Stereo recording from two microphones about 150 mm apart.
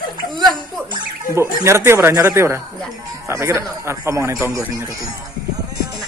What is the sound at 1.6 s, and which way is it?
A man's voice, 15° right (ahead or behind).